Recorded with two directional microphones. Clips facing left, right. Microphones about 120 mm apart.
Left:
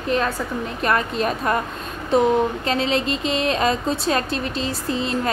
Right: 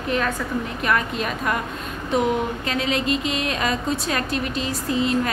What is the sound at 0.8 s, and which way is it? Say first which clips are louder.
A woman's voice: left 3 dB; 35° left (ahead or behind).